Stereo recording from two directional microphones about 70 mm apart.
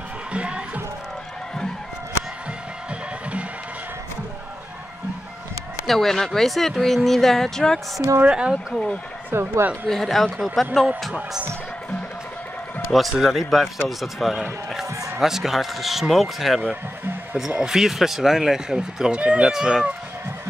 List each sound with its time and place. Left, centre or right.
0.3 s music: centre
5.9 s speech: centre
8.2 s speech: centre
9.3 s speech: right
9.8 s speech: centre
13.1 s speech: centre